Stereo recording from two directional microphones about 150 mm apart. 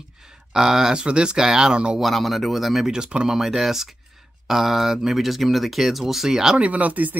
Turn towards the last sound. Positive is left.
turn(degrees=-10)  # may be behind; listen again after turning